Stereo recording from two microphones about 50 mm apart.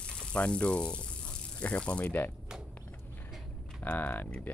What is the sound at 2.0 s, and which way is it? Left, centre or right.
Speech, left.